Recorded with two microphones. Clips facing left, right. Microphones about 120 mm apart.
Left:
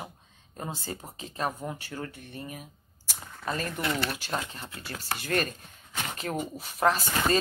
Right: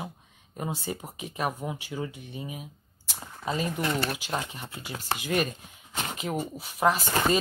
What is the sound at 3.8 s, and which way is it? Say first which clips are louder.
Speech: even; 30° right (ahead or behind).